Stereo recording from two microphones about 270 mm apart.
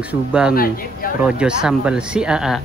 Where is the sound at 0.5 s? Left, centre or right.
Left.